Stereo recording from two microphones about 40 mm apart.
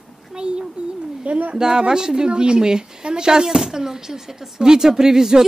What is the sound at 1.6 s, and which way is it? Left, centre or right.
A woman's voice, centre.